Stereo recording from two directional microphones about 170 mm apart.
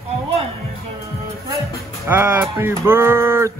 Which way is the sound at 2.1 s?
10° right (ahead or behind).